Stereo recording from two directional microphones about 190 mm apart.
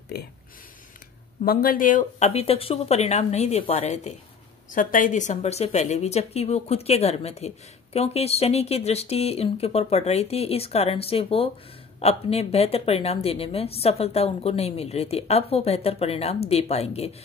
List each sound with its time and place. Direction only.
0.1 s speech: 60° left (ahead or behind)
1.4 s a woman's voice: 50° left (ahead or behind); by 17.1 s 35° left (ahead or behind)